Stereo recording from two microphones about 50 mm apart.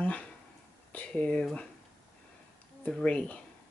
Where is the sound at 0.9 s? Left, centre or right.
Left.